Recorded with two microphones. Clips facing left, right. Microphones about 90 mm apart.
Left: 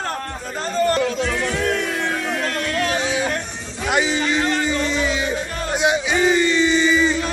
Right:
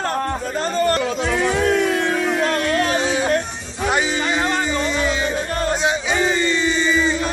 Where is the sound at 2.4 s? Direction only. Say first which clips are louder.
Right 3 dB; 35° right (ahead or behind).